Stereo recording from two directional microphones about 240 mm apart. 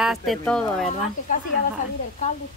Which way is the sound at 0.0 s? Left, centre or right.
Centre.